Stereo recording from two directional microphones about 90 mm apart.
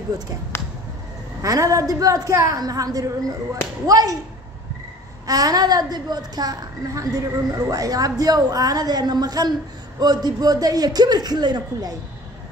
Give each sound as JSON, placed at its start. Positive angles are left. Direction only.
{"t": 1.4, "sound": "a woman's voice", "side_deg": -40}
{"t": 5.2, "sound": "a woman's voice", "side_deg": -45}